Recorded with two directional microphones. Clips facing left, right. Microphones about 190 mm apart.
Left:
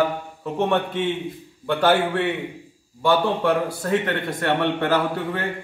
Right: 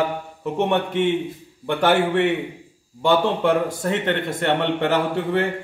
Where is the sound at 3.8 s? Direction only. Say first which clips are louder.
Even; 20° right (ahead or behind).